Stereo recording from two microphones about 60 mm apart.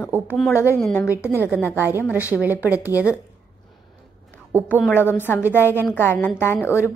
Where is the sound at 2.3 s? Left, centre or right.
Right.